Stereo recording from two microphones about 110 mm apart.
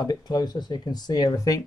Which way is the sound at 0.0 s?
40° left (ahead or behind).